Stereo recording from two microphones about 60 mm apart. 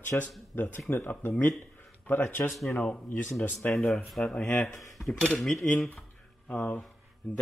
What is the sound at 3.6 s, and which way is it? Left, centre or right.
Speech, left.